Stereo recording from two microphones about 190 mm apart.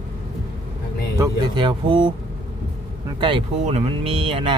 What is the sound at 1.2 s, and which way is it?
Speech, 25° right (ahead or behind).